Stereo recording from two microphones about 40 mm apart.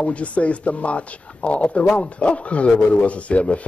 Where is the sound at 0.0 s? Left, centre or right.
Left.